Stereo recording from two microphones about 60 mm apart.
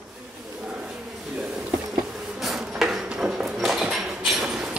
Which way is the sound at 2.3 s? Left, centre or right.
Centre.